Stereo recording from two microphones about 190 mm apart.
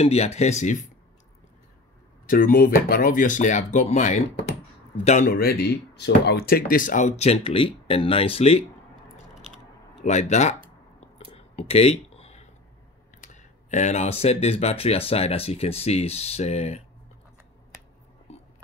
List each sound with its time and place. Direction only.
0.0 s speech: 35° left (ahead or behind)
2.2 s speech: 45° left (ahead or behind)
5.3 s speech: 55° left (ahead or behind); by 8.6 s 30° left (ahead or behind)
10.0 s speech: 40° left (ahead or behind)
11.3 s a sound: 30° left (ahead or behind)
13.3 s speech: 40° left (ahead or behind)